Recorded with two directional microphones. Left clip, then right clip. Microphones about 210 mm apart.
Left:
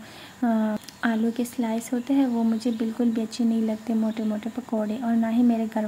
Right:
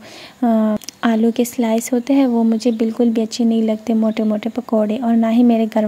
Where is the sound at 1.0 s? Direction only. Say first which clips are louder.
Right 9 dB; 35° right (ahead or behind).